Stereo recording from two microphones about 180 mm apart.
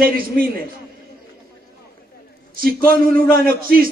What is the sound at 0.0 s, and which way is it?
Speech, 55° right (ahead or behind).